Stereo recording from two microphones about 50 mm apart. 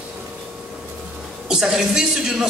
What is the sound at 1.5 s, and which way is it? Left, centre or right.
Speech, centre.